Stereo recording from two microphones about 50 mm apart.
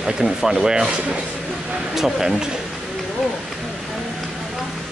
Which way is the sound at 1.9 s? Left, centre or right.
Centre.